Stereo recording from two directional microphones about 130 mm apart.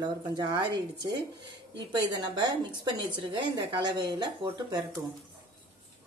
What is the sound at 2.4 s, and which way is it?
A woman's voice, 35° right (ahead or behind).